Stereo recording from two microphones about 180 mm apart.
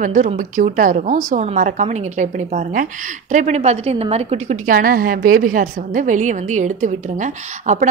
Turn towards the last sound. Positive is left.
turn(degrees=-40)  # may be behind; listen again after turning